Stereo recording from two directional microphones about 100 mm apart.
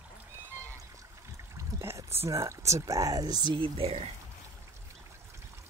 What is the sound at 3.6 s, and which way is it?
Speech, 70° right (ahead or behind).